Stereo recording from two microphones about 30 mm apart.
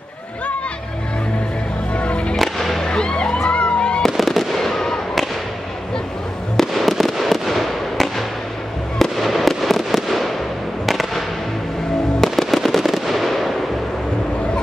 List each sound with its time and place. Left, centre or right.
2.0 s music: left
2.3 s music: centre
2.8 s music: left
4.0 s fireworks: centre
6.5 s fireworks: centre